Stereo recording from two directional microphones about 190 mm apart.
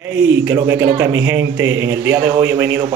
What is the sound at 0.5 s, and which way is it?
Speech, 15° right (ahead or behind).